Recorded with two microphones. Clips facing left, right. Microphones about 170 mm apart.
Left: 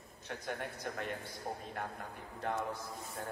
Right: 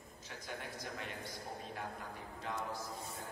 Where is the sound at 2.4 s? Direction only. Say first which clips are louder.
Left 6 dB; 55° left (ahead or behind).